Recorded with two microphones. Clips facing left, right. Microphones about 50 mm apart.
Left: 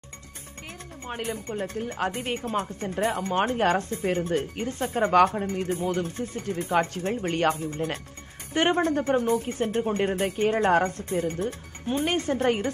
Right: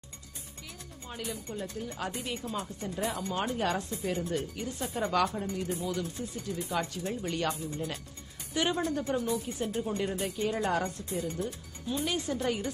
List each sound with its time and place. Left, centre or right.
1.0 s speech: left